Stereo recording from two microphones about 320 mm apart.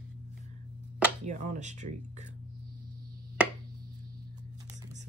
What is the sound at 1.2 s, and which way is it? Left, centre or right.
Speech, right.